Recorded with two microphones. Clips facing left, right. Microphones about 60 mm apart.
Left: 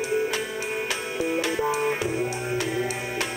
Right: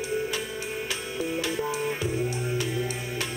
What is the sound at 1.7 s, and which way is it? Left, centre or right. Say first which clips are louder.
Music: left 4 dB; left.